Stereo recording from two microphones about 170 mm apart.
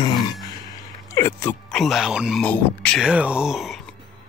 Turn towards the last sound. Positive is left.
turn(degrees=0)  # may be behind; listen again after turning